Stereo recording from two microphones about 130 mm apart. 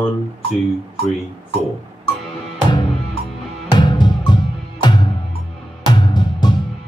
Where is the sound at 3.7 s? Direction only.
35° left (ahead or behind).